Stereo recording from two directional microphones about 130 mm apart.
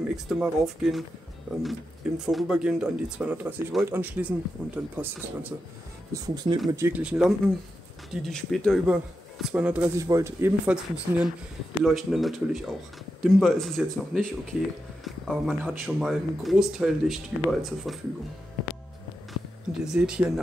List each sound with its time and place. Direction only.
0.1 s speech: 5° right (ahead or behind)
6.1 s speech: 30° right (ahead or behind)
6.9 s speech: 10° right (ahead or behind)
8.8 s speech: 5° right (ahead or behind)
9.9 s speech: 25° right (ahead or behind)
10.6 s speech: 5° right (ahead or behind)
15.6 s speech: 10° right (ahead or behind)
19.8 s speech: 5° right (ahead or behind)